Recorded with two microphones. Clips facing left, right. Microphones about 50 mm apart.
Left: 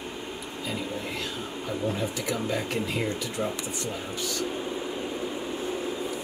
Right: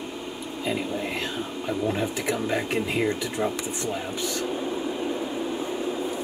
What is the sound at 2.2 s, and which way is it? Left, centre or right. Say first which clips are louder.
Speech: right 3 dB; right.